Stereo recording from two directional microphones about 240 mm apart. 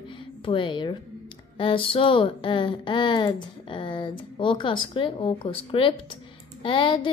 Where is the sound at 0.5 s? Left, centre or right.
Centre.